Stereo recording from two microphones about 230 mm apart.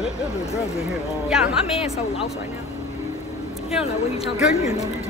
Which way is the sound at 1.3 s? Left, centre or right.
Centre.